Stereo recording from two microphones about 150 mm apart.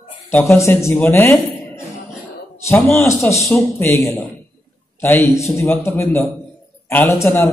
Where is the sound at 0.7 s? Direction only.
15° left (ahead or behind).